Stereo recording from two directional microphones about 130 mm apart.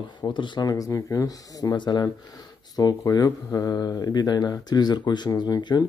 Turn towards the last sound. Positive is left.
turn(degrees=30)  # may be behind; listen again after turning